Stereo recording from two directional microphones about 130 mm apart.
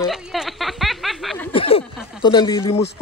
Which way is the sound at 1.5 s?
45° left (ahead or behind).